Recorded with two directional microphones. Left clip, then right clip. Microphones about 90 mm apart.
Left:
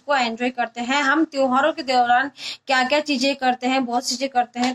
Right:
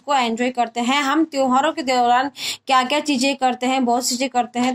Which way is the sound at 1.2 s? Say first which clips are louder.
Right 1 dB; 30° right (ahead or behind).